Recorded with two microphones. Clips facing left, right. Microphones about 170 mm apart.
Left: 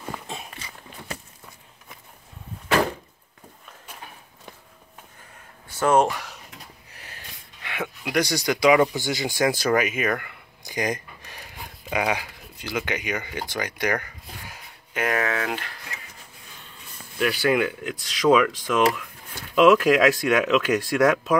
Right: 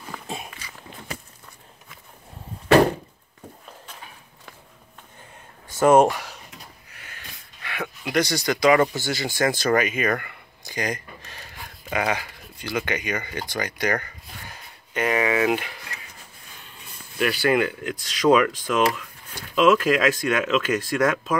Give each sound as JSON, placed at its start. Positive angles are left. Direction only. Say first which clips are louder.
{"t": 5.8, "sound": "speech", "louder": "right 4 dB", "side_deg": -15}
{"t": 6.9, "sound": "snort", "louder": "left 1 dB", "side_deg": 35}
{"t": 7.6, "sound": "a sound", "louder": "left 1 dB", "side_deg": 20}
{"t": 8.0, "sound": "speech", "louder": "right 1 dB", "side_deg": 10}
{"t": 10.6, "sound": "a sound", "louder": "left 2 dB", "side_deg": 15}
{"t": 15.1, "sound": "speech", "louder": "right 5 dB", "side_deg": -10}
{"t": 17.2, "sound": "speech", "louder": "right 1 dB", "side_deg": 0}